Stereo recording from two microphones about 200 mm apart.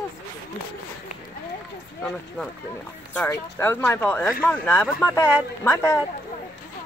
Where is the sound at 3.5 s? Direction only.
10° left (ahead or behind).